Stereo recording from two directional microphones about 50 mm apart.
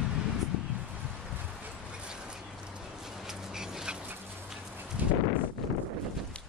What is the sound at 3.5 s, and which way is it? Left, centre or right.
Dog, centre.